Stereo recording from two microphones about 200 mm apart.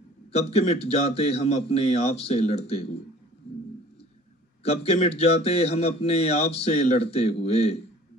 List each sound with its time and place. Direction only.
0.3 s speech: 30° left (ahead or behind)
4.6 s speech: 30° left (ahead or behind)